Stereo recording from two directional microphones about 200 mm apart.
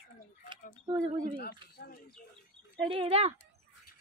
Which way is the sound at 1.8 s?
45° left (ahead or behind).